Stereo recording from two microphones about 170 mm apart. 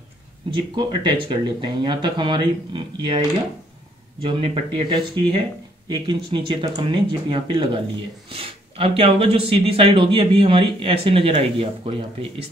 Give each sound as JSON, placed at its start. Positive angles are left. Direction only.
{"t": 0.5, "sound": "speech", "side_deg": -30}